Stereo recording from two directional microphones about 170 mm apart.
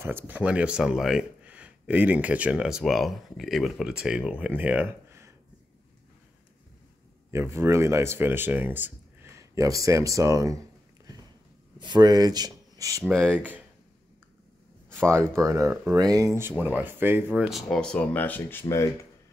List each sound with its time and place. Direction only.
0.0 s speech: 10° right (ahead or behind)
7.2 s speech: 15° right (ahead or behind)
11.8 s speech: 25° right (ahead or behind)
15.0 s speech: 15° right (ahead or behind); by 18.9 s 15° left (ahead or behind)